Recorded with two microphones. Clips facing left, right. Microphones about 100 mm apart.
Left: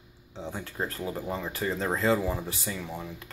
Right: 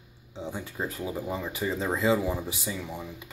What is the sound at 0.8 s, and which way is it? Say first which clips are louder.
Speech: even; 10° right (ahead or behind).